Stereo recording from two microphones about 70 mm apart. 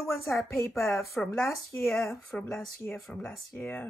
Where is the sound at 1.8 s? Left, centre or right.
Centre.